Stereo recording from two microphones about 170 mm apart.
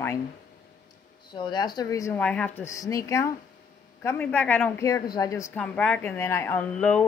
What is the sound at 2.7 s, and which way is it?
Speech, 20° left (ahead or behind).